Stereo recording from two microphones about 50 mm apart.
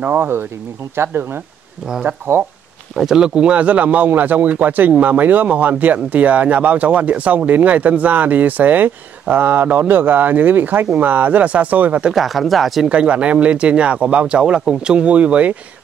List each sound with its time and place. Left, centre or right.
0.0 s speech: right
0.9 s speech: right
3.0 s speech: centre; by 12.0 s right
12.1 s speech: centre
12.8 s speech: right